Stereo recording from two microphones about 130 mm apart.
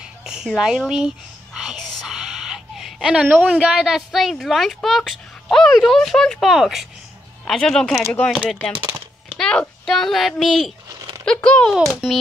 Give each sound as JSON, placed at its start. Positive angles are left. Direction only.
{"t": 0.0, "sound": "a woman's voice", "side_deg": -5}
{"t": 10.9, "sound": "a sound", "side_deg": -30}
{"t": 11.2, "sound": "speech", "side_deg": 10}
{"t": 11.7, "sound": "speech", "side_deg": -5}